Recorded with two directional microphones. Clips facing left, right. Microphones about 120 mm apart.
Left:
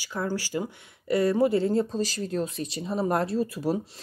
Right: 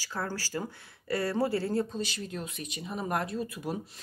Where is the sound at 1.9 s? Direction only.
35° left (ahead or behind).